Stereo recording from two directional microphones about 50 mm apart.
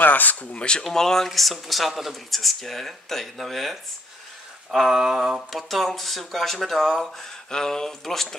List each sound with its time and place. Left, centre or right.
0.0 s speech: left; by 0.8 s centre
0.8 s speech: centre
4.7 s a sound: centre
5.5 s speech: centre